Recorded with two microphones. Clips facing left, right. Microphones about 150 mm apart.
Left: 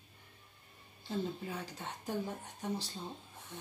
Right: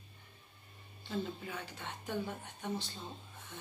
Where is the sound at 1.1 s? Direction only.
35° left (ahead or behind).